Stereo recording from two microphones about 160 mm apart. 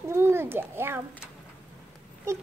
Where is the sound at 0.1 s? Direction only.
15° right (ahead or behind).